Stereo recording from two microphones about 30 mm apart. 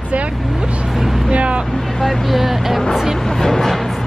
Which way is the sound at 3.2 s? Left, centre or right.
Centre.